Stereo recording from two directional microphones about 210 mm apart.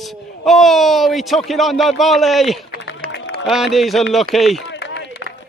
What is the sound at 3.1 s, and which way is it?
Music, 55° left (ahead or behind).